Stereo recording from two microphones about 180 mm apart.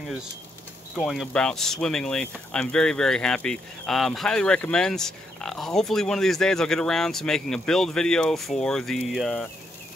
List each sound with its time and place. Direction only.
0.9 s speech: centre (ahead or behind)